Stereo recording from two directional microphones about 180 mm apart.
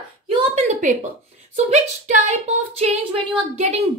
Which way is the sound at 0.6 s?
40° right (ahead or behind).